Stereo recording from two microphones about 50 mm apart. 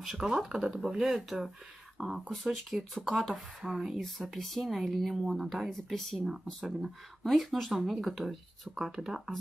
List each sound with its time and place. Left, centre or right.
0.0 s speech: centre